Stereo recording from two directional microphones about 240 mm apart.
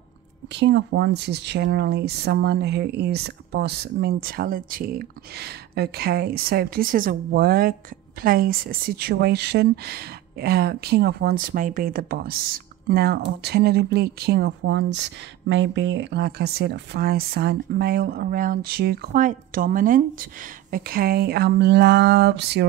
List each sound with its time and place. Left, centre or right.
0.5 s speech: right